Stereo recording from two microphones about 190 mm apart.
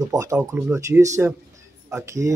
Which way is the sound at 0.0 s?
15° right (ahead or behind).